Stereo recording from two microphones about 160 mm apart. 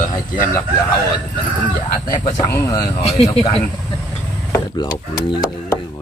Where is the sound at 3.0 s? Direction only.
40° left (ahead or behind).